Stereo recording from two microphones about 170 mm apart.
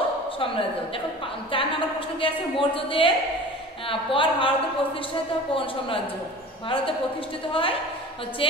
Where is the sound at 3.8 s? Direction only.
30° left (ahead or behind).